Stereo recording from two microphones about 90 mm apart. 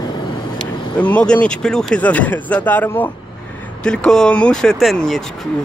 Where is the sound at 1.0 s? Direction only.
15° left (ahead or behind).